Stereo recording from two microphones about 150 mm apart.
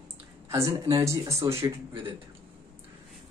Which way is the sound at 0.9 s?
20° right (ahead or behind).